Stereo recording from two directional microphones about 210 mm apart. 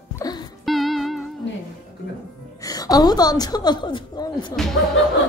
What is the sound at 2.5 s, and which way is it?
A woman's voice, 15° left (ahead or behind).